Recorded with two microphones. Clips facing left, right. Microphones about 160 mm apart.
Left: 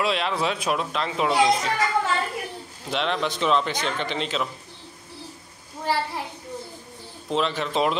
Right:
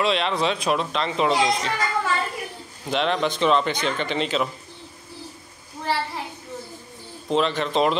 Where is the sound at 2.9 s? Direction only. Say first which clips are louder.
Right 3 dB; centre (ahead or behind).